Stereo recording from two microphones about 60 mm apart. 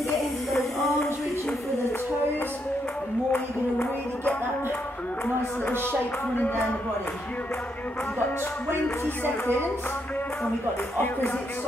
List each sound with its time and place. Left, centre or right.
5.9 s speech: left
8.8 s music: left
11.0 s music: left